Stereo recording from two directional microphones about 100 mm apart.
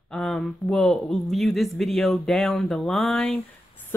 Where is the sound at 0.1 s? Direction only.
5° left (ahead or behind).